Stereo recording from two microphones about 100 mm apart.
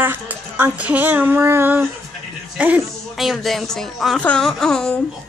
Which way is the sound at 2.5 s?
15° right (ahead or behind).